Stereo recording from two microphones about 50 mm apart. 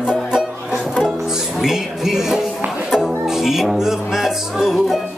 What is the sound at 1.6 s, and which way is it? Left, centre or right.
Music, centre.